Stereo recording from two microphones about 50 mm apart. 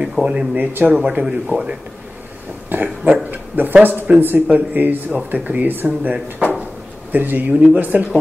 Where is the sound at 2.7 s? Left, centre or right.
Right.